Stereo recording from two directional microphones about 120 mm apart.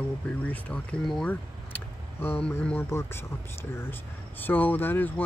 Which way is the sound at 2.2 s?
15° left (ahead or behind).